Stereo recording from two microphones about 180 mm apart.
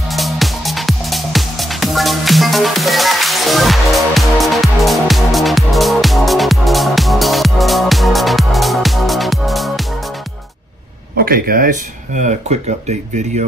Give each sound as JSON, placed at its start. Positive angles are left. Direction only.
{"t": 0.1, "sound": "music", "side_deg": 0}
{"t": 11.1, "sound": "speech", "side_deg": -55}
{"t": 12.2, "sound": "speech", "side_deg": -40}